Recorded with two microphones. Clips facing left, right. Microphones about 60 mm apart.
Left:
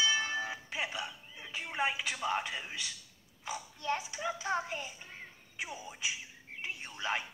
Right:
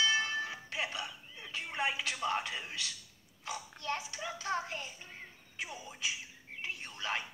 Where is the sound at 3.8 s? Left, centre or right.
Centre.